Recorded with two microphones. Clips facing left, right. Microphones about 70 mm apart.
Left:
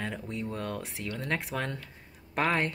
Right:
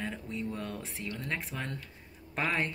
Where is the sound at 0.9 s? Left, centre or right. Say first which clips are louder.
Left 3 dB; left.